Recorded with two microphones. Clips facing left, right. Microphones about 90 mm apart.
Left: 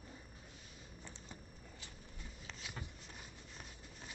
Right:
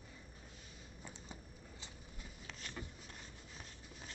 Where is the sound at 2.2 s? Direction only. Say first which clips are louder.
Even; centre (ahead or behind).